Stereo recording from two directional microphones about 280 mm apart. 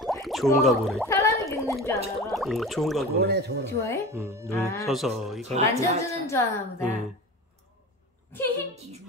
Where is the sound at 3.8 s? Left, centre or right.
Centre.